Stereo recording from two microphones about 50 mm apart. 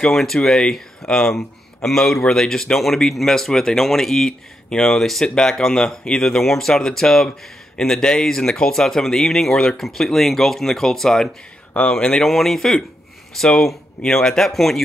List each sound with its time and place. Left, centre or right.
0.1 s speech: centre